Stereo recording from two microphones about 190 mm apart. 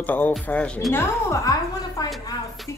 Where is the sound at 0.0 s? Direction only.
10° left (ahead or behind).